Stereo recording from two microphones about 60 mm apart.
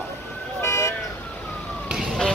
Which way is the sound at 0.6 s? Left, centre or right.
Left.